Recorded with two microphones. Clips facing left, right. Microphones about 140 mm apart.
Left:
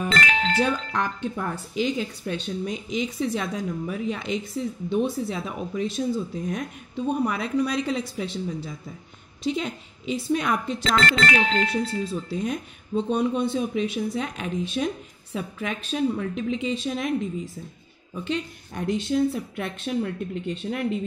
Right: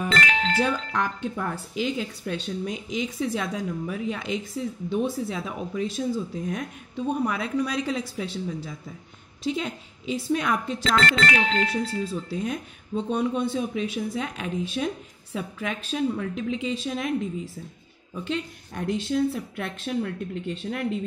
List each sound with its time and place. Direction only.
0.3 s music: 20° left (ahead or behind)
0.7 s speech: 5° right (ahead or behind)
10.8 s speech: 25° left (ahead or behind)
12.1 s speech: centre (ahead or behind)